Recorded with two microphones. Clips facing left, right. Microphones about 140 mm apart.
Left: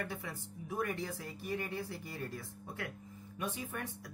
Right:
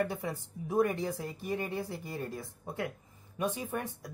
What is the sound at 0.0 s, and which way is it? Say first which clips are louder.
Speech: right 8 dB; 25° right (ahead or behind).